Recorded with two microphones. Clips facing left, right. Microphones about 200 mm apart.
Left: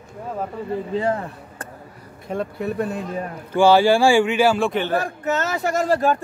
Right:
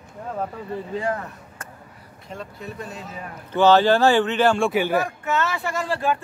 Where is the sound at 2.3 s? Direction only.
60° left (ahead or behind).